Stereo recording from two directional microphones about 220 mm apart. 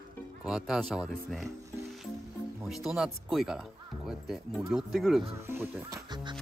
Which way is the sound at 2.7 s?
Centre (ahead or behind).